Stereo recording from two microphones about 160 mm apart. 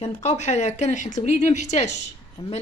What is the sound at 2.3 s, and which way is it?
Speech, 35° left (ahead or behind).